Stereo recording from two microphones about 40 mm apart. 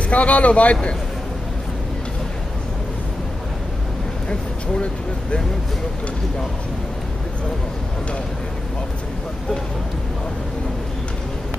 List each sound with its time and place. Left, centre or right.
0.1 s speech: left